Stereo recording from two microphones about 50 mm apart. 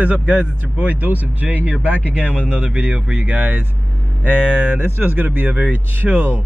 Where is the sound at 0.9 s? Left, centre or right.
Right.